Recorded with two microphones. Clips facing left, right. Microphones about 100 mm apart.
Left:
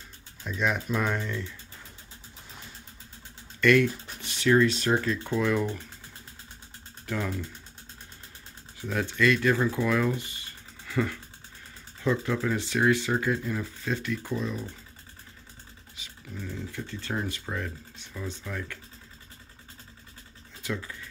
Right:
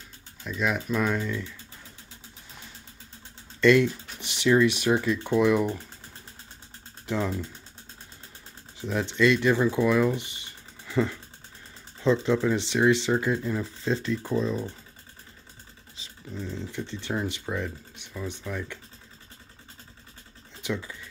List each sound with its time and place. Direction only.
0.4 s speech: centre (ahead or behind)
3.6 s speech: 25° right (ahead or behind)
7.1 s speech: 20° right (ahead or behind)
8.8 s speech: 20° right (ahead or behind)
16.0 s beatboxing: 30° right (ahead or behind)
16.3 s speech: 20° right (ahead or behind)
20.6 s speech: 20° right (ahead or behind)